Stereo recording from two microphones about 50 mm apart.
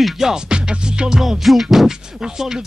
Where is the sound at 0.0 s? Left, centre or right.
Centre.